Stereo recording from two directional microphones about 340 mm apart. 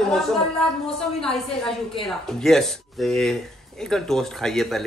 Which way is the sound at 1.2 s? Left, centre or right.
Centre.